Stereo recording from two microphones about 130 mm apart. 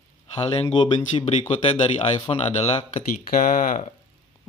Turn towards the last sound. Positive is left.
turn(degrees=90)